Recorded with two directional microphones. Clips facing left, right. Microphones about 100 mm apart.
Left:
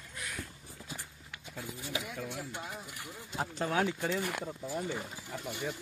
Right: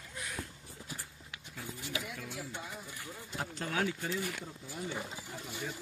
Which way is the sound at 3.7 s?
30° left (ahead or behind).